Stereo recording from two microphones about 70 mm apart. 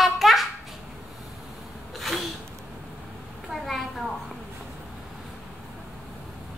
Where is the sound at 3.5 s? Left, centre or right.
Centre.